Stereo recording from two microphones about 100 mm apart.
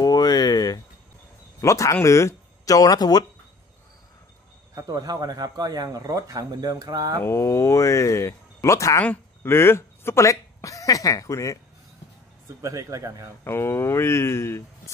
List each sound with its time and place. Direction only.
0.0 s a sound: 40° left (ahead or behind)
1.6 s speech: 30° left (ahead or behind)
4.7 s speech: 40° right (ahead or behind)
7.2 s speech: 25° left (ahead or behind)
9.0 s speech: 20° left (ahead or behind)
12.6 s speech: 35° right (ahead or behind)
13.4 s speech: 25° left (ahead or behind)